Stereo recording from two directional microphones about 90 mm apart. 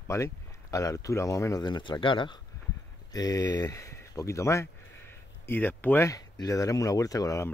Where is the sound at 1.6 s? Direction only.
60° left (ahead or behind).